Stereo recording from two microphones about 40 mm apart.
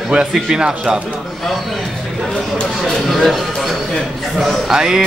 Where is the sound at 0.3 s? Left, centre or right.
Centre.